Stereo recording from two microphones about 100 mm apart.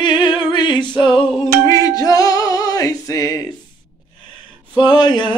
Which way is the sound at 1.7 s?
40° left (ahead or behind).